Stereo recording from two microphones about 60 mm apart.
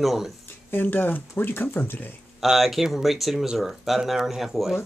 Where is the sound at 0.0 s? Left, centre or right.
Centre.